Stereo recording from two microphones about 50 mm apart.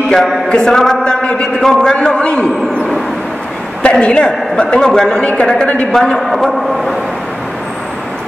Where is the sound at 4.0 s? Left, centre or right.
Left.